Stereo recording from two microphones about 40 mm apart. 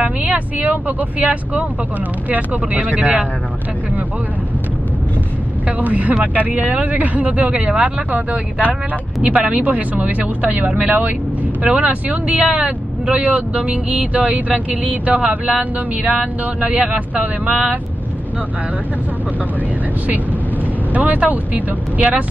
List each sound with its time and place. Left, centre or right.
0.0 s speech: right
0.7 s speech: right
5.7 s speech: right
15.2 s speech: right
16.0 s speech: right
20.9 s speech: right